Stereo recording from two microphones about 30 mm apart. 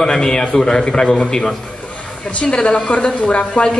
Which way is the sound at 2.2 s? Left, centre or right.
Left.